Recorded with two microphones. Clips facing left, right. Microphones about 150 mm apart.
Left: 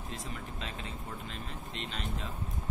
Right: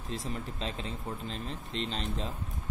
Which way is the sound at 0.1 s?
30° right (ahead or behind).